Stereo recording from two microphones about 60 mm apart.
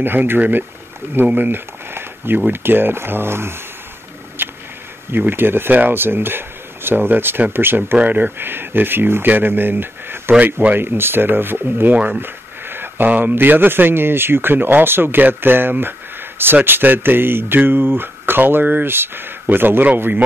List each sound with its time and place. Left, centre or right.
0.0 s speech: right
4.4 s a sound: right
5.3 s speech: right
12.2 s speech: right